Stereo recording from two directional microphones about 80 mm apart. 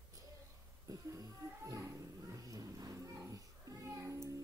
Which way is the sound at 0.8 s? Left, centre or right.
Right.